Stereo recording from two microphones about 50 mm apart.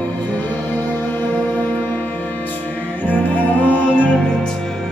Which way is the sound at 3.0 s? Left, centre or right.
Left.